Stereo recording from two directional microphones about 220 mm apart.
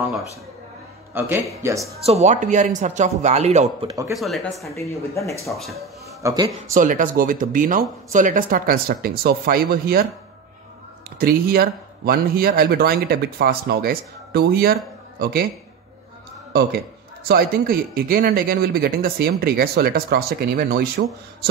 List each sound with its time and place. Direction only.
1.1 s speech: 10° right (ahead or behind)
2.0 s speech: 30° right (ahead or behind)
3.8 s speech: 15° right (ahead or behind)
4.1 s speech: centre (ahead or behind)
4.7 s speech: 15° left (ahead or behind)
5.4 s speech: centre (ahead or behind)
6.2 s speech: 15° right (ahead or behind)
6.7 s speech: 35° right (ahead or behind)
11.1 s speech: 45° right (ahead or behind)
17.2 s speech: 40° right (ahead or behind)